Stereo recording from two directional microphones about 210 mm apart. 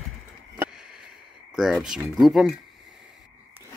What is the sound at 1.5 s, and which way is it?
Speech, 5° right (ahead or behind).